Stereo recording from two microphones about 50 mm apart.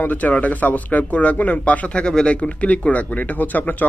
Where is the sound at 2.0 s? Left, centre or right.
Centre.